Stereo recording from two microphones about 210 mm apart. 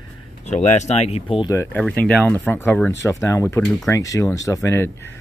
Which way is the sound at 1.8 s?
5° left (ahead or behind).